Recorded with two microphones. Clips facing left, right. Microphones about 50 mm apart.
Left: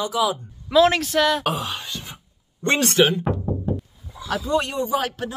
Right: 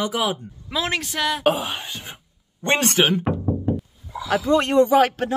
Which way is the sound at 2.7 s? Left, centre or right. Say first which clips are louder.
Even; right.